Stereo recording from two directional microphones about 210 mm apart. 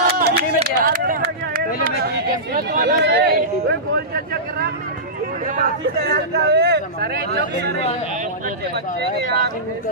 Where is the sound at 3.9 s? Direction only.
50° right (ahead or behind).